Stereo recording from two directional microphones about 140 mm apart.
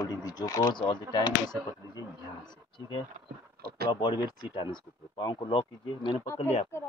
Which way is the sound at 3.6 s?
90° right.